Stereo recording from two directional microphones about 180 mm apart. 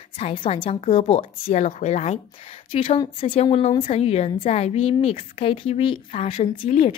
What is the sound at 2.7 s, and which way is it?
A woman's voice, 30° left (ahead or behind).